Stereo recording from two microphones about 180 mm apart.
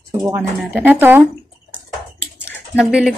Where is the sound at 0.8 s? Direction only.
10° right (ahead or behind).